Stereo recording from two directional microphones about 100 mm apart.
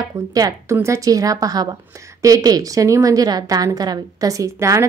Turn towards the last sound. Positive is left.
turn(degrees=-30)  # may be behind; listen again after turning